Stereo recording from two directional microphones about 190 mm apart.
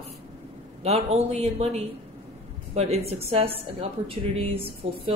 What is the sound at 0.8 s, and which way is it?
Speech, 35° right (ahead or behind).